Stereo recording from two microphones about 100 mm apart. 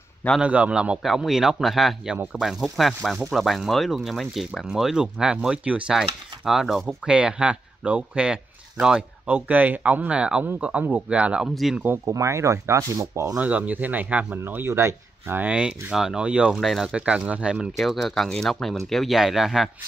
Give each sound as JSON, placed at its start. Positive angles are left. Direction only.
{"t": 0.4, "sound": "speech", "side_deg": -10}
{"t": 12.1, "sound": "speech", "side_deg": -30}
{"t": 13.4, "sound": "speech", "side_deg": -15}
{"t": 16.5, "sound": "speech", "side_deg": 0}
{"t": 17.7, "sound": "speech", "side_deg": 0}